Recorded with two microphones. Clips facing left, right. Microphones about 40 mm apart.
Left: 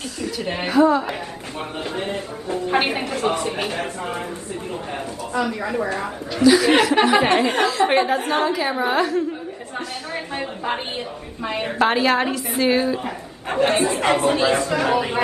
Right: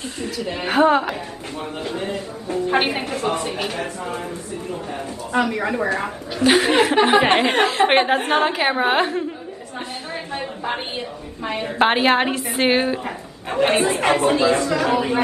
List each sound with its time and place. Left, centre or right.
0.4 s speech: left
0.7 s a woman's voice: right
1.8 s speech: left
5.3 s a woman's voice: right
11.8 s a woman's voice: right
14.7 s a man's voice: left